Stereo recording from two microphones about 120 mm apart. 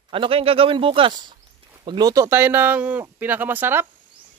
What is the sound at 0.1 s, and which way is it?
A man's voice, 50° right (ahead or behind).